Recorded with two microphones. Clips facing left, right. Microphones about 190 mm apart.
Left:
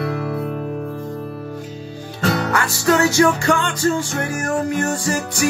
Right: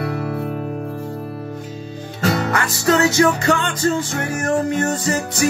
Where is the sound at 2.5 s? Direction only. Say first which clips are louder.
Even; 20° right (ahead or behind).